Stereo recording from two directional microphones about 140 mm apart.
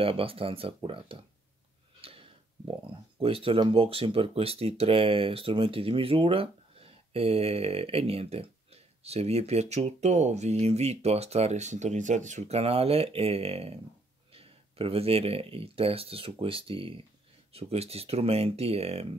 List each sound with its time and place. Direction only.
0.0 s speech: 40° right (ahead or behind)
2.0 s a sound: 45° right (ahead or behind)
2.9 s speech: 40° right (ahead or behind)